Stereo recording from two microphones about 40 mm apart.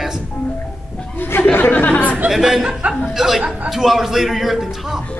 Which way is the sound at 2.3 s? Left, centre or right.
Centre.